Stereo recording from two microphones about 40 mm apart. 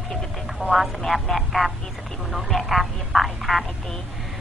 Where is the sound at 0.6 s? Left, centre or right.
Right.